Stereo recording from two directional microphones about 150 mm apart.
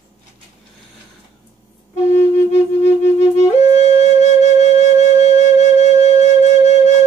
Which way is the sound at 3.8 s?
45° left (ahead or behind).